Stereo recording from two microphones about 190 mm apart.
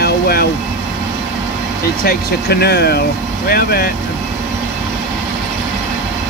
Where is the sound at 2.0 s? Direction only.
55° left (ahead or behind).